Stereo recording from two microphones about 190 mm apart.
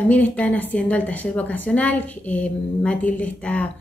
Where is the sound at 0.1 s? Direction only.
10° left (ahead or behind).